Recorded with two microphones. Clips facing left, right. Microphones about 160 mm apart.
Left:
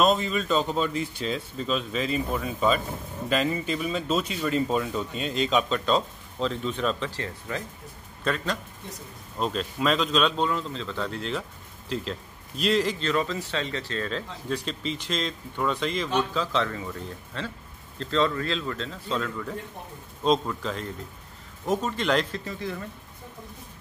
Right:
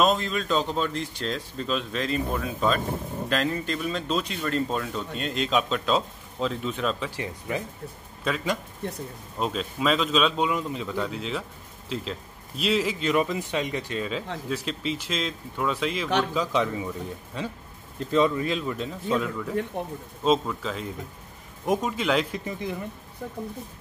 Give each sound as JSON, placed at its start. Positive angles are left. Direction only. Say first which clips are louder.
{"t": 0.0, "sound": "speech", "louder": "even", "side_deg": 0}
{"t": 7.1, "sound": "a man's voice", "louder": "right 2 dB", "side_deg": -15}
{"t": 19.7, "sound": "a man's voice", "louder": "right 10 dB", "side_deg": -70}
{"t": 20.2, "sound": "speech", "louder": "right 1 dB", "side_deg": 0}